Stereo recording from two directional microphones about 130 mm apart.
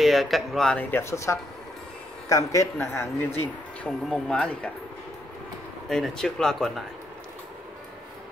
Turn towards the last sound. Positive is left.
turn(degrees=0)  # may be behind; listen again after turning